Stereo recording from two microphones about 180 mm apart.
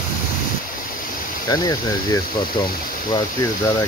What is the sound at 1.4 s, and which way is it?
Speech, 20° left (ahead or behind).